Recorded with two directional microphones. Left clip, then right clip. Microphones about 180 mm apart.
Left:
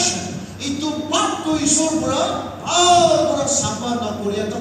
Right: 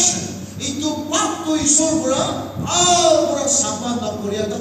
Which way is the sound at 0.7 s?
20° right (ahead or behind).